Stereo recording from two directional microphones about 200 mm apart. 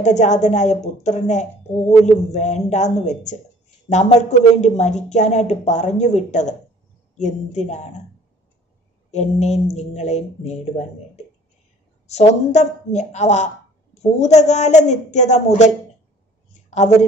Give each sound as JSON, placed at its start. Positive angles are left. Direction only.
{"t": 0.0, "sound": "a woman's voice", "side_deg": 35}
{"t": 9.1, "sound": "a woman's voice", "side_deg": 35}
{"t": 12.1, "sound": "a woman's voice", "side_deg": 35}